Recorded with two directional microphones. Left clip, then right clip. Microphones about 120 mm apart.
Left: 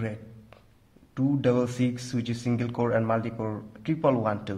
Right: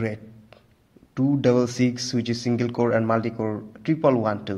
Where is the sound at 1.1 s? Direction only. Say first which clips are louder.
Right 4 dB; 25° right (ahead or behind).